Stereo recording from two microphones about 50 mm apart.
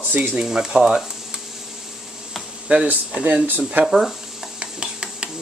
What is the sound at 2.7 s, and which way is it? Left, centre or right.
Speech, right.